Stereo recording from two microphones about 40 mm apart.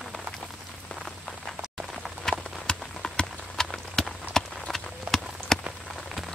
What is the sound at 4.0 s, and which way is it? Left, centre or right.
Walk, centre.